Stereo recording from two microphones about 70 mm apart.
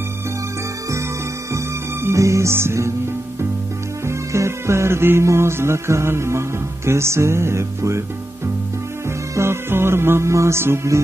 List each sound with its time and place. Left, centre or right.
2.0 s music: right
4.1 s music: right
9.3 s music: right